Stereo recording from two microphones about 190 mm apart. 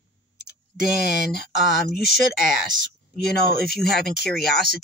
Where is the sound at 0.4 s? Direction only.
60° left (ahead or behind).